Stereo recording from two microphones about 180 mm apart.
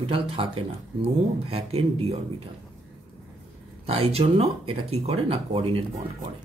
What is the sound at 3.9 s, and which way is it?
Speech, 35° right (ahead or behind).